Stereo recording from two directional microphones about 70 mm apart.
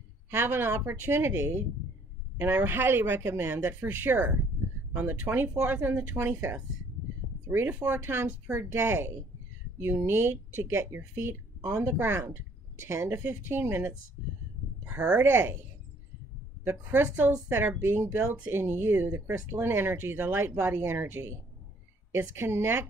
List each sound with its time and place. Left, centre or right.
0.3 s speech: right
15.1 s speech: right
16.6 s speech: right